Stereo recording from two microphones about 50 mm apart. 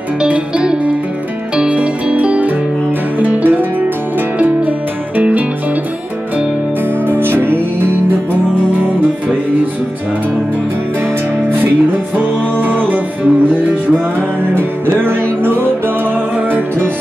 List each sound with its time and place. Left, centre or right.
0.2 s music: right
3.2 s music: right
7.1 s music: right
12.2 s music: right
14.5 s music: right